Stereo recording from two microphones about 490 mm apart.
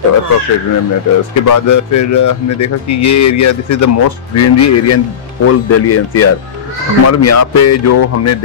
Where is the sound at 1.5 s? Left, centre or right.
Left.